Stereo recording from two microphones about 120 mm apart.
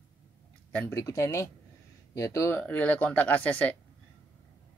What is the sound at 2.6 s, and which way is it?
Speech, 10° left (ahead or behind).